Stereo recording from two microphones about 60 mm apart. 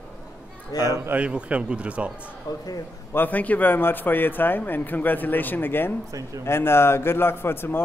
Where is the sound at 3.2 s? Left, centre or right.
Left.